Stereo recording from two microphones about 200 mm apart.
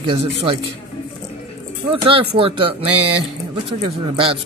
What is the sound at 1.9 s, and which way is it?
Speech, 25° right (ahead or behind).